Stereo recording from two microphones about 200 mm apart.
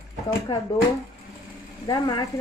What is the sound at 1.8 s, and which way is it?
Speech, 20° left (ahead or behind).